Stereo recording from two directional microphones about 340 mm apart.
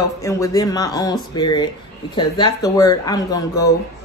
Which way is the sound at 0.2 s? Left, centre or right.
Centre.